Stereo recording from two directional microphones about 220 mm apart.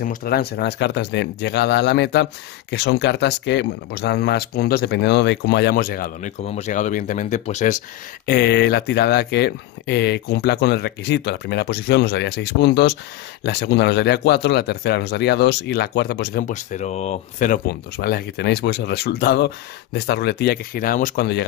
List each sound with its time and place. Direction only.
0.0 s speech: 40° left (ahead or behind)
8.3 s speech: 45° left (ahead or behind)
16.4 s speech: 35° left (ahead or behind)